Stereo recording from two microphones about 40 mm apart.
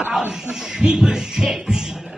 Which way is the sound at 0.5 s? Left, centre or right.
Centre.